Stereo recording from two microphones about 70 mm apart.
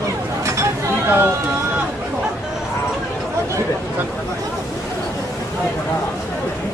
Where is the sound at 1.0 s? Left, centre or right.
Right.